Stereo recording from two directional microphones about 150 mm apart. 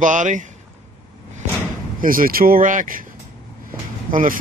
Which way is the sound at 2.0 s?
70° right (ahead or behind).